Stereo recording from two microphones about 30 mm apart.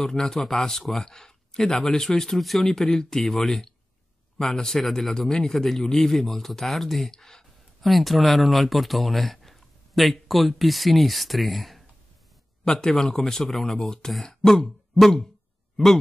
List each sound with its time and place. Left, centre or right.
0.0 s speech: centre
1.8 s speech: centre
7.8 s speech: centre
12.6 s speech: left
12.9 s speech: centre
13.7 s speech: centre
14.2 s throat clearing: centre
15.7 s speech: centre